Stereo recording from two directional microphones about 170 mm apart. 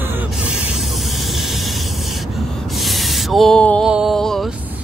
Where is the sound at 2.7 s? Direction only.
Centre (ahead or behind).